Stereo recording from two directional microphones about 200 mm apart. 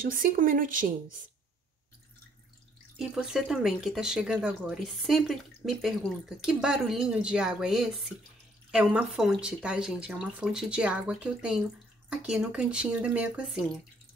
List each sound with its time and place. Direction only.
0.1 s speech: 40° right (ahead or behind)
3.0 s speech: 5° right (ahead or behind)